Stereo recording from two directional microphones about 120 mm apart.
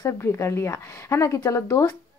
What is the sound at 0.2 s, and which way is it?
A woman's voice, 20° left (ahead or behind).